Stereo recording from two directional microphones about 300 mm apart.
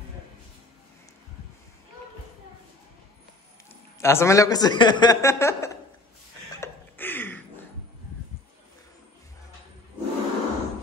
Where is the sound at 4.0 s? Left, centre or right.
Centre.